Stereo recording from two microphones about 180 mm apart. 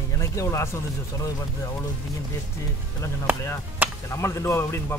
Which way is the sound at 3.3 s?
15° left (ahead or behind).